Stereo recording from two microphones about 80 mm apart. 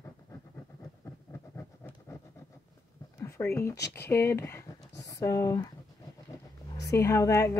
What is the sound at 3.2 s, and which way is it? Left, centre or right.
Speech, left.